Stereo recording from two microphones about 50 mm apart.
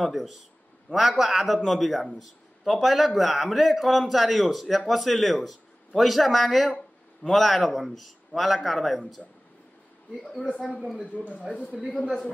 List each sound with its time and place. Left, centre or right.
0.0 s a man's voice: centre
10.2 s speech: centre
11.1 s a woman's voice: left